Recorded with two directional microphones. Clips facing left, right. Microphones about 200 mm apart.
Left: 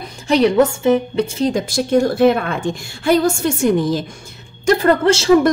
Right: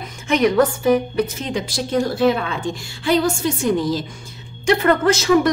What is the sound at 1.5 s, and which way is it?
A woman's voice, 50° left (ahead or behind).